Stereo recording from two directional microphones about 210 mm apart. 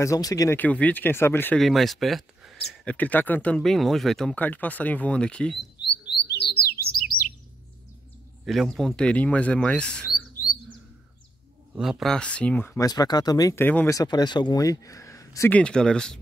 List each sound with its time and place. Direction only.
0.0 s speech: 15° left (ahead or behind)
5.8 s bird: 55° left (ahead or behind)
8.5 s speech: centre (ahead or behind)
11.7 s speech: 5° right (ahead or behind)